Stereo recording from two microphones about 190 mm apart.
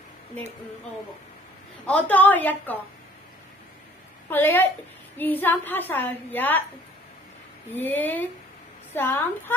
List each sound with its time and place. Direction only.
1.9 s a woman's voice: 5° left (ahead or behind)
4.3 s a woman's voice: 10° left (ahead or behind)
7.7 s a woman's voice: 10° left (ahead or behind)